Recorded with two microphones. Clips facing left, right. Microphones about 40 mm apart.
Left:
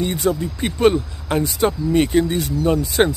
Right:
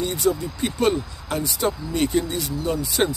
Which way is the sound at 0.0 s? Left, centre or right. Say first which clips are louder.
Left 2 dB; left.